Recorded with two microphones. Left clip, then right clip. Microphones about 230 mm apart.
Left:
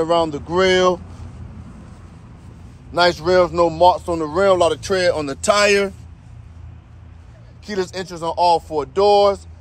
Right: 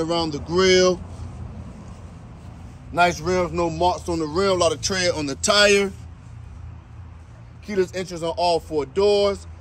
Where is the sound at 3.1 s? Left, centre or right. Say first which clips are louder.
Left 7 dB; centre.